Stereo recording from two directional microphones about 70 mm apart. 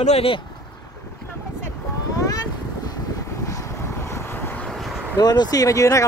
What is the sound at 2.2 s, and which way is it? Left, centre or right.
Boat, left.